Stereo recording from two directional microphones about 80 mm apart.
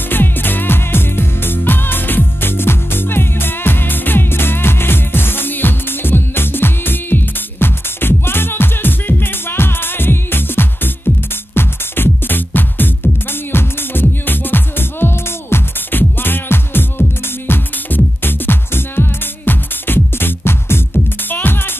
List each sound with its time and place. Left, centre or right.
0.1 s music: left